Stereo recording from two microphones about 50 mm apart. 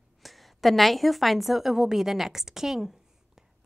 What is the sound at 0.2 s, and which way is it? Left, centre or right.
A woman's voice, centre.